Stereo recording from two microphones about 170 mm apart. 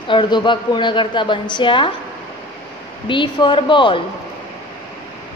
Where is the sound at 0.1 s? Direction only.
30° left (ahead or behind).